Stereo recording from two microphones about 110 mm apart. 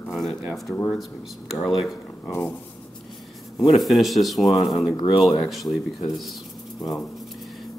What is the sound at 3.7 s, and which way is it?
Speech, centre (ahead or behind).